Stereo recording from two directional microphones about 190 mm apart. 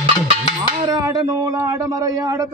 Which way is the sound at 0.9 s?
20° right (ahead or behind).